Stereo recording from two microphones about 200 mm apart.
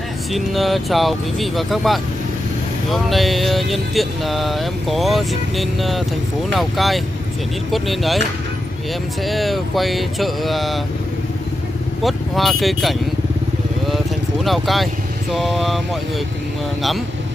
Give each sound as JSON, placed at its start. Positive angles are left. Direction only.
{"t": 0.3, "sound": "speech", "side_deg": 0}
{"t": 9.2, "sound": "speech", "side_deg": 0}
{"t": 12.0, "sound": "speech", "side_deg": 0}
{"t": 13.8, "sound": "vehicle", "side_deg": 0}
{"t": 15.3, "sound": "speech", "side_deg": 0}